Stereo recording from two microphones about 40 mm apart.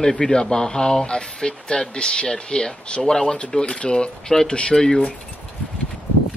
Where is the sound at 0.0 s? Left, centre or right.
Centre.